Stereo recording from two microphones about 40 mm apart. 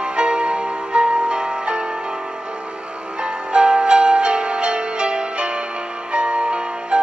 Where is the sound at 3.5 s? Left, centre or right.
Right.